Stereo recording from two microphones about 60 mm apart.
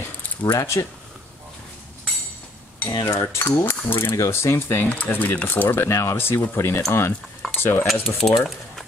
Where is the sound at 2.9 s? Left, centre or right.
Left.